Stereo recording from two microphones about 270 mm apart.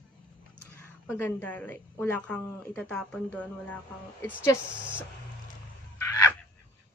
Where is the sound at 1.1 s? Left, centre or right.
Centre.